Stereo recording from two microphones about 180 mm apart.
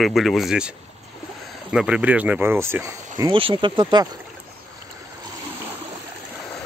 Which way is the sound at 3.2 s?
30° right (ahead or behind).